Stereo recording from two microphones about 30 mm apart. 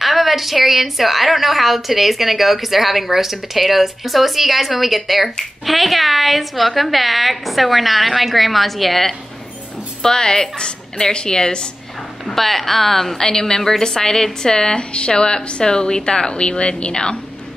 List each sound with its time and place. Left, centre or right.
0.0 s a woman's voice: centre
10.0 s speech: left
12.4 s a woman's voice: centre; by 14.8 s left
14.8 s speech: left